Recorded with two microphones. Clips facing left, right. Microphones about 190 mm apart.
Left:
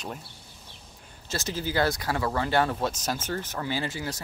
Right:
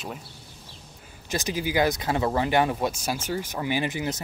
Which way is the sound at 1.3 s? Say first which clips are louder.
Right 3 dB; 15° right (ahead or behind).